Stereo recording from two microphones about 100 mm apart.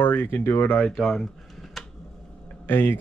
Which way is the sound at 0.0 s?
20° left (ahead or behind).